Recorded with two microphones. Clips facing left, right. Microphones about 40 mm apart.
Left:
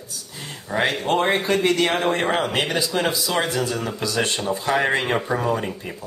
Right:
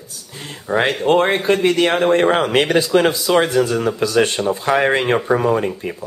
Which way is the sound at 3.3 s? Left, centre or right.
Right.